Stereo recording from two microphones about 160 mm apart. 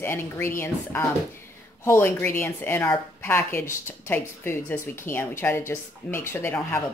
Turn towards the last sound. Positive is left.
turn(degrees=15)  # may be behind; listen again after turning